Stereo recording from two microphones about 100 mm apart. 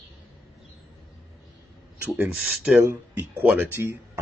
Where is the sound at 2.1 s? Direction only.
10° right (ahead or behind).